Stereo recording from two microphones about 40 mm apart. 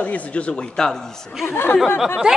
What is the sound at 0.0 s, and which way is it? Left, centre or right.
Speech, left.